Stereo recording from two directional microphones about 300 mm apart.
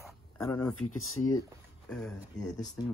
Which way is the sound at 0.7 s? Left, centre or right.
Left.